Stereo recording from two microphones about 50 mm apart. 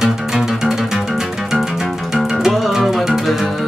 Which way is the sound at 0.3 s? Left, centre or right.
Centre.